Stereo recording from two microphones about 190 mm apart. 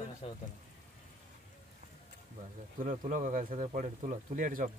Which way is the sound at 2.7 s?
40° right (ahead or behind).